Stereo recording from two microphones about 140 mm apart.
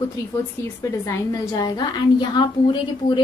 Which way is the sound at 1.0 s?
25° left (ahead or behind).